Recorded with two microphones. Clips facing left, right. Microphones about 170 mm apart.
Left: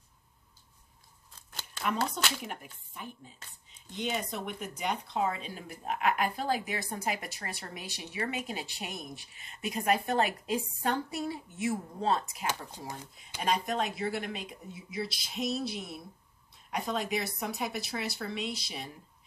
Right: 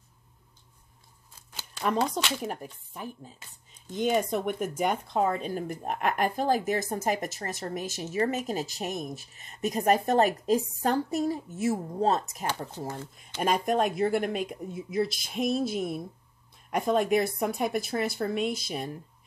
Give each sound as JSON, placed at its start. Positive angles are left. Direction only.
{"t": 2.0, "sound": "speech", "side_deg": 0}
{"t": 2.4, "sound": "speech", "side_deg": -40}